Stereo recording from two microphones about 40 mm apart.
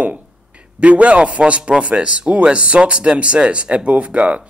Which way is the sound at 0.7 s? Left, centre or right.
Right.